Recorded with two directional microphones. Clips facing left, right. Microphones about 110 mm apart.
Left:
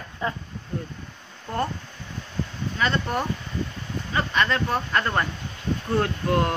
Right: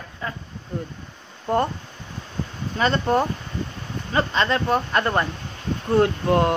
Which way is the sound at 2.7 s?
35° right (ahead or behind).